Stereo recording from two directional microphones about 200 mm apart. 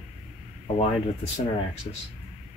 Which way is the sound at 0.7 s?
35° left (ahead or behind).